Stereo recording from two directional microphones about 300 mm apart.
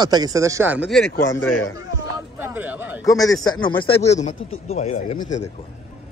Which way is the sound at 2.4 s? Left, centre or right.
Centre.